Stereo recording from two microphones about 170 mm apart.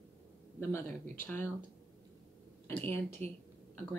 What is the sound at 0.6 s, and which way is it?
Speech, 15° left (ahead or behind).